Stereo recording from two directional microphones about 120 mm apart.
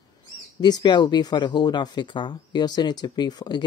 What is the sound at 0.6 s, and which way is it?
Speech, 35° left (ahead or behind).